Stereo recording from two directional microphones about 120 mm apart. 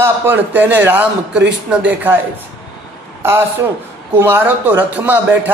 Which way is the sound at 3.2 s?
20° right (ahead or behind).